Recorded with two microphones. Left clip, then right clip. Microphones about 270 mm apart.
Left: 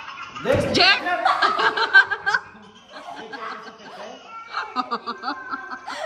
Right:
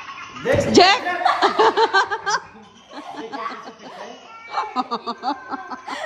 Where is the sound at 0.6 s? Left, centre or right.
Centre.